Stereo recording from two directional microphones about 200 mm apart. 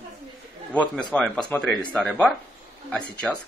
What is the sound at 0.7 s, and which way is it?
Speech, 5° left (ahead or behind).